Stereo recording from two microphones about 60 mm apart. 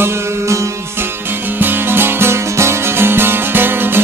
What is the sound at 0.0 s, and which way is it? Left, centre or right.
Music, right.